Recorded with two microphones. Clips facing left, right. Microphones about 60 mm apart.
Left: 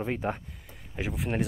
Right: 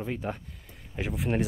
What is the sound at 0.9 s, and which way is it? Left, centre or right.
Speech, centre.